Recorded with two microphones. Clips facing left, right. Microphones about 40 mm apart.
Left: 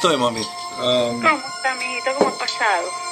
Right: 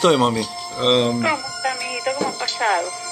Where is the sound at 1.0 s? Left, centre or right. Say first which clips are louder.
Left 2 dB; centre.